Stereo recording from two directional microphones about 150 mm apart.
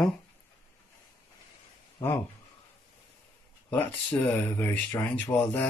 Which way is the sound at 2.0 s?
15° left (ahead or behind).